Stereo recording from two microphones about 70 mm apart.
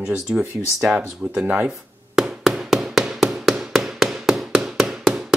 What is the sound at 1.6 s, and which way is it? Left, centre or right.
Hammer, centre.